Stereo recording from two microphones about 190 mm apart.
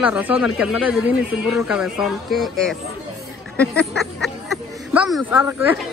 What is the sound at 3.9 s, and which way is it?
Music, centre (ahead or behind).